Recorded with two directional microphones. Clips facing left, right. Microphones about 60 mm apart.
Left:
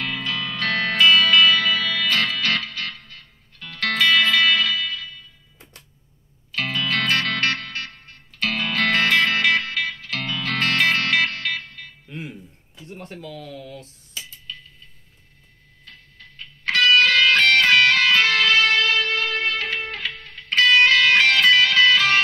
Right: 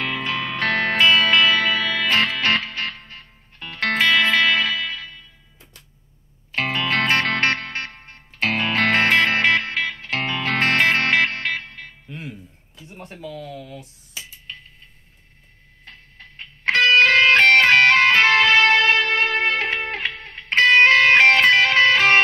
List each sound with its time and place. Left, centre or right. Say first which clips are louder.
0.0 s music: right 2 dB; right
6.5 s music: right 2 dB; right
12.1 s music: left 1 dB; centre
12.8 s dishes: even; centre
14.5 s tick-tock: even; right
15.8 s music: right 2 dB; right